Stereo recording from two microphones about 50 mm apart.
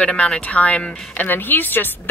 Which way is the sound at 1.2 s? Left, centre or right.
Left.